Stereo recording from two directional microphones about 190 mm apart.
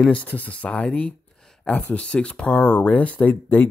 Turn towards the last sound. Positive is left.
turn(degrees=10)  # may be behind; listen again after turning